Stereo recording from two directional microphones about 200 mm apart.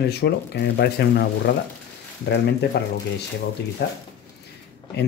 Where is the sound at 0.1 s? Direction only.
55° left (ahead or behind).